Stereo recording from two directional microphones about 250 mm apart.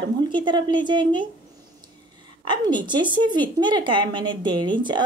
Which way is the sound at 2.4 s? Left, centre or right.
Centre.